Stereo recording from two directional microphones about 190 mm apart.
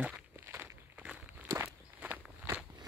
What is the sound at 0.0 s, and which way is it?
Walk, 10° right (ahead or behind).